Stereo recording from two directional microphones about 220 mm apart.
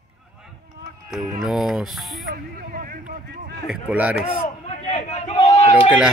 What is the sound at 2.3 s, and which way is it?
Speech, 40° right (ahead or behind).